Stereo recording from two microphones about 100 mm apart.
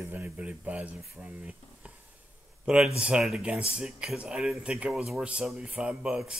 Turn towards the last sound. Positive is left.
turn(degrees=-5)  # may be behind; listen again after turning